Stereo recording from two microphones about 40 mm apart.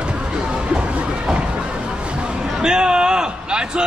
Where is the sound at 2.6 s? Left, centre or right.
Centre.